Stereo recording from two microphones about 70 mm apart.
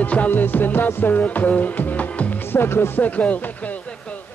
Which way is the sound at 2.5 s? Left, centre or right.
Left.